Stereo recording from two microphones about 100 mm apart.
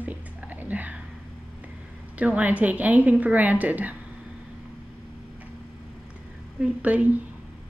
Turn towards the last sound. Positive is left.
turn(degrees=-15)  # may be behind; listen again after turning